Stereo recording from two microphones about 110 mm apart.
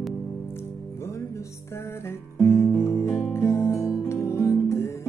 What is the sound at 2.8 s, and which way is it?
Music, 25° left (ahead or behind).